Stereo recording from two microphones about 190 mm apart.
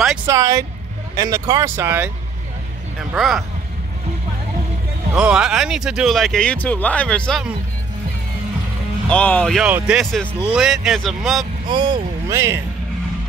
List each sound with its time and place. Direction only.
0.3 s speech: 15° right (ahead or behind)
3.1 s speech: centre (ahead or behind)
5.1 s speech: 5° right (ahead or behind)
9.1 s speech: 5° left (ahead or behind)
9.7 s speech: 5° right (ahead or behind)
11.6 s speech: 25° right (ahead or behind)